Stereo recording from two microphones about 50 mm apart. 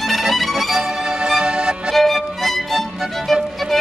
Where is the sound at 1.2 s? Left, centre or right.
Centre.